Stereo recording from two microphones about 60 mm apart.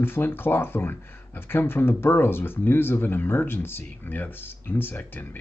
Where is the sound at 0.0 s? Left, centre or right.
Left.